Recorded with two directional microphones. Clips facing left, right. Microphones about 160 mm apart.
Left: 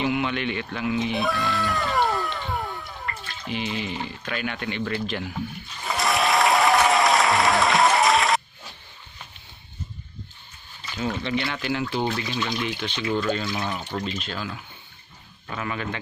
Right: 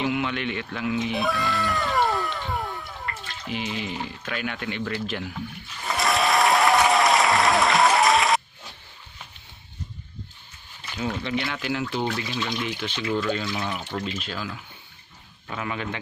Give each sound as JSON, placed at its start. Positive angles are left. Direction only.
{"t": 0.0, "sound": "goat", "side_deg": 0}
{"t": 3.4, "sound": "speech", "side_deg": -5}
{"t": 5.9, "sound": "applause", "side_deg": 0}
{"t": 11.1, "sound": "speech", "side_deg": -5}
{"t": 15.5, "sound": "a man's voice", "side_deg": -15}